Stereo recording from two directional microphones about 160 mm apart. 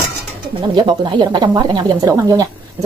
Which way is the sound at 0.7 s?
30° right (ahead or behind).